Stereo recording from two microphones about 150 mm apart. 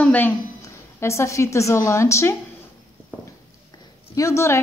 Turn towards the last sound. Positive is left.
turn(degrees=20)  # may be behind; listen again after turning